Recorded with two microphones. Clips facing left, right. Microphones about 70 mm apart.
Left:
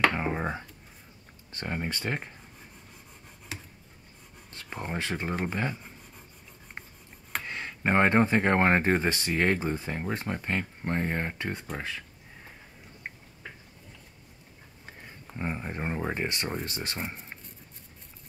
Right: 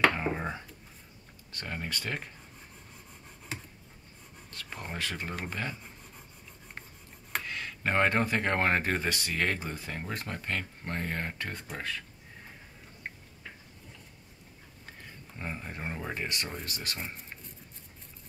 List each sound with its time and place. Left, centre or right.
0.1 s speech: centre
4.5 s speech: left
7.4 s speech: left
14.9 s speech: left